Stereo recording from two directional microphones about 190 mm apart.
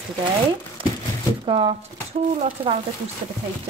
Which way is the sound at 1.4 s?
30° right (ahead or behind).